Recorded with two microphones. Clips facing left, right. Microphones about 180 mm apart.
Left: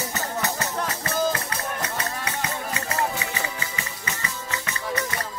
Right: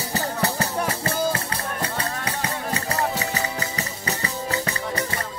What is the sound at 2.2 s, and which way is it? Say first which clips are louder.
Music: right 2 dB; 35° right (ahead or behind).